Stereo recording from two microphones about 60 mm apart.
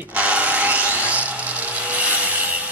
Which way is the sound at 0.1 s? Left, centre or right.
Right.